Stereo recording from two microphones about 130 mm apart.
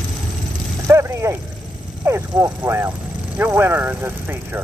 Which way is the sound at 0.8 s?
20° right (ahead or behind).